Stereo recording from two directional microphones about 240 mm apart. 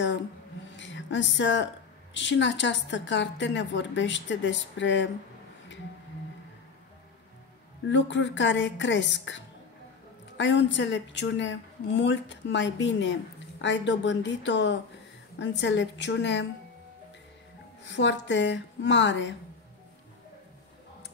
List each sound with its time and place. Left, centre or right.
0.7 s a sound: left
2.1 s a woman's voice: left
7.9 s a woman's voice: left
17.8 s a woman's voice: left